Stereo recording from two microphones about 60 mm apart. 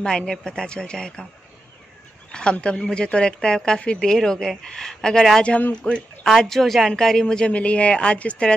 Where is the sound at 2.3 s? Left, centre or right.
Centre.